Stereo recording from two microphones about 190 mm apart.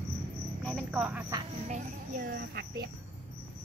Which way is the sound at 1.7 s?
45° right (ahead or behind).